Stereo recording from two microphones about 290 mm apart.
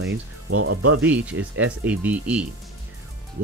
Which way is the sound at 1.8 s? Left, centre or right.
Centre.